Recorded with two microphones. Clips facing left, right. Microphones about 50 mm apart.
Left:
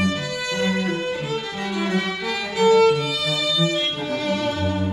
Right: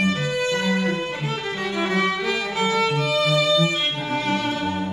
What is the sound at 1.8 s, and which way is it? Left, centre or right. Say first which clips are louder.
Violin: right 3 dB; right.